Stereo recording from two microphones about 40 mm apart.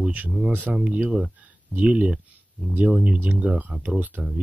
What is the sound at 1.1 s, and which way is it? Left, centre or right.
Speech, centre.